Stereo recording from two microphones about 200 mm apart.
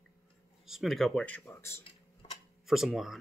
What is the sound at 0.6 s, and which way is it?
Speech, centre (ahead or behind).